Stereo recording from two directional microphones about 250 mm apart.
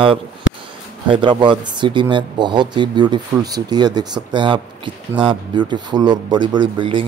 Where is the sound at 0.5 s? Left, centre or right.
Left.